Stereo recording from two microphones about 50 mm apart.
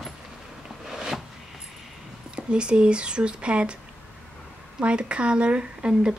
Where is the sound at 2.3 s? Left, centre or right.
Centre.